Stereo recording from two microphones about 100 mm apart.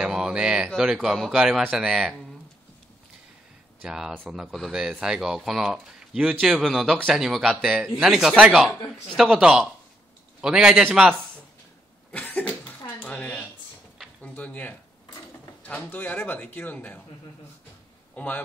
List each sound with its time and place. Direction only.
0.0 s a sound: 10° right (ahead or behind)
0.7 s a man's voice: 5° right (ahead or behind)
3.8 s a man's voice: 5° right (ahead or behind)
12.1 s cough: 15° left (ahead or behind)
14.2 s a man's voice: 15° left (ahead or behind)
18.1 s a man's voice: 15° left (ahead or behind)